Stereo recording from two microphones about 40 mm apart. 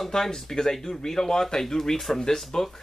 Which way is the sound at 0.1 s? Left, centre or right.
Centre.